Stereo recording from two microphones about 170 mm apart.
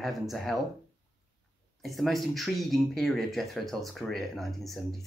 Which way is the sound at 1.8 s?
Centre (ahead or behind).